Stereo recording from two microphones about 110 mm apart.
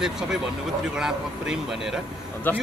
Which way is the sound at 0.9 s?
5° right (ahead or behind).